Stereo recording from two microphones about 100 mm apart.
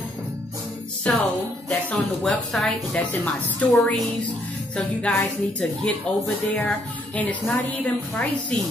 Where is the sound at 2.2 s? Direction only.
5° left (ahead or behind).